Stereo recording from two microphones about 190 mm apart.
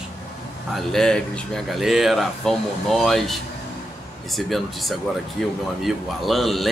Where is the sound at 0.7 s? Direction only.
5° left (ahead or behind).